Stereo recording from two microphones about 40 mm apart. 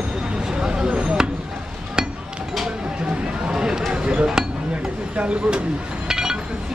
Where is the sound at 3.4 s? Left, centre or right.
Centre.